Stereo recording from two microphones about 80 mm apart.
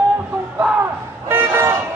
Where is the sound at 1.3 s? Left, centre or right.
Right.